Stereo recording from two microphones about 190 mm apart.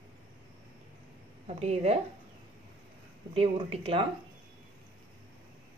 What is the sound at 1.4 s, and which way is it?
Speech, 35° right (ahead or behind).